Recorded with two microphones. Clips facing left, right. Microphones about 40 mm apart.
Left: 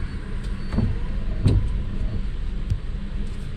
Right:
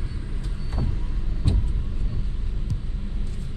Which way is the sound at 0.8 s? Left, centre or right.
Centre.